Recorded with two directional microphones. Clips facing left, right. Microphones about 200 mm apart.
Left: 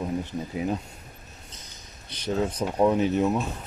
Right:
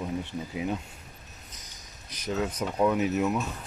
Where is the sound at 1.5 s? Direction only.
30° left (ahead or behind).